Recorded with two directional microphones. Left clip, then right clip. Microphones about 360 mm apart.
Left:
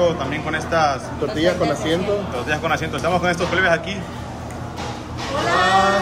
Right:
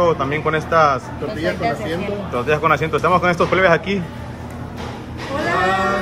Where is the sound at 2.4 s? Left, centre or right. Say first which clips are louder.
Right 9 dB; centre.